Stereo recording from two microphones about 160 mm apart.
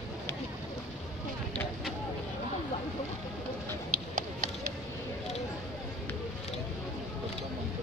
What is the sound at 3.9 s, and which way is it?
Run, 50° right (ahead or behind).